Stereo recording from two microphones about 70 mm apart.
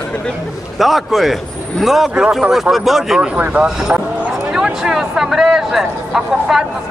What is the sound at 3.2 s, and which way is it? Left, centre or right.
Speech, centre.